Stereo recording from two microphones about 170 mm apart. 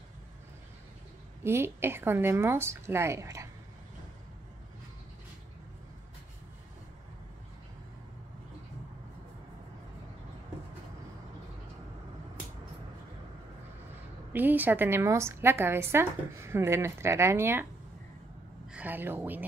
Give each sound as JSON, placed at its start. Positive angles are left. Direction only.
{"t": 1.4, "sound": "a woman's voice", "side_deg": -15}
{"t": 14.3, "sound": "a woman's voice", "side_deg": -10}
{"t": 18.7, "sound": "a woman's voice", "side_deg": -10}